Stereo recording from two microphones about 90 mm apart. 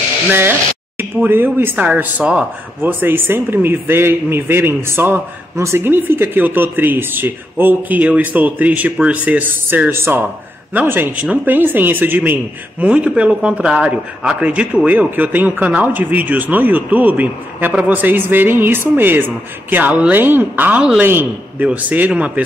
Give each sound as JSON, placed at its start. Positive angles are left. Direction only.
{"t": 0.3, "sound": "speech", "side_deg": -25}